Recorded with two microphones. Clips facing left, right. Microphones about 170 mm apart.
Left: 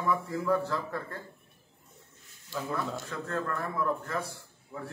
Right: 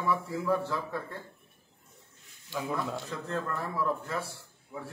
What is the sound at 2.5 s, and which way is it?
A man's voice, 10° right (ahead or behind).